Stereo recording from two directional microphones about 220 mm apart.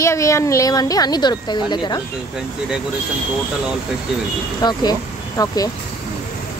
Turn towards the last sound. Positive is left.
turn(degrees=15)  # may be behind; listen again after turning